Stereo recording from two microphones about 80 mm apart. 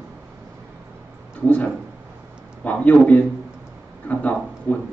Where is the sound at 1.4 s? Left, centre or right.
Centre.